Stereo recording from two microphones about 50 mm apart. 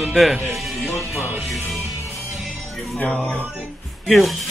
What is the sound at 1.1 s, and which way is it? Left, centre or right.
Music, right.